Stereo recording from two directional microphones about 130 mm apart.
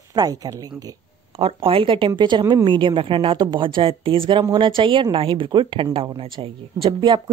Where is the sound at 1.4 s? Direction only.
45° right (ahead or behind).